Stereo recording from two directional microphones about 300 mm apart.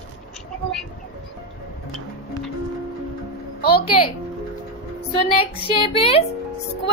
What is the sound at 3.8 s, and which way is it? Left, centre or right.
Speech, centre.